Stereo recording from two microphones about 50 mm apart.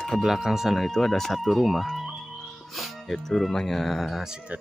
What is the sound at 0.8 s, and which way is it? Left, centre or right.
Speech, centre.